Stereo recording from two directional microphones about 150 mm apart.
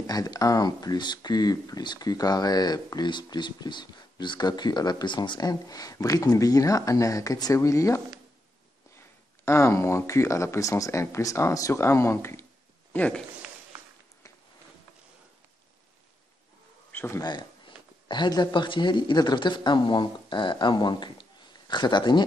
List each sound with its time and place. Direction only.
0.0 s speech: 25° left (ahead or behind)
9.4 s a man's voice: 20° left (ahead or behind)
16.9 s a sound: 15° left (ahead or behind)
17.2 s speech: 30° left (ahead or behind)